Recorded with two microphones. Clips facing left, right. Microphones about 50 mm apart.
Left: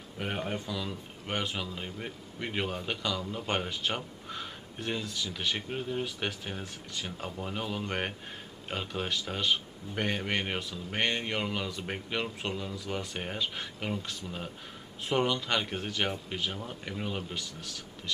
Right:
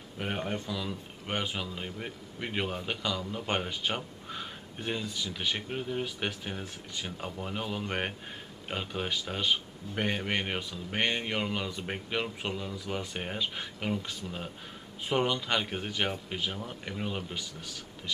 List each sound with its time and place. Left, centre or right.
0.2 s a man's voice: centre